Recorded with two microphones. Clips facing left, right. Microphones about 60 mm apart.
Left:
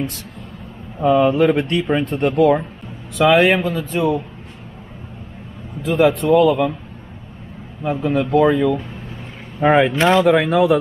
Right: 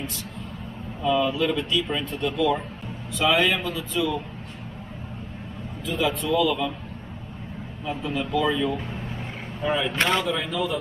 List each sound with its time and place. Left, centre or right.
1.0 s speech: left
3.2 s speech: left
5.9 s speech: left
7.8 s speech: left